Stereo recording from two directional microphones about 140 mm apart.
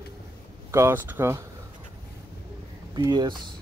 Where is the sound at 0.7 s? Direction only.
15° right (ahead or behind).